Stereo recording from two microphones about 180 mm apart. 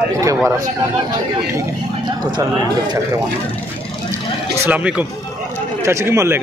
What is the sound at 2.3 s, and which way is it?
Speech, 20° right (ahead or behind).